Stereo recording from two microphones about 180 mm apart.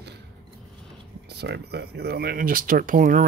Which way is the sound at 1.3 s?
65° right (ahead or behind).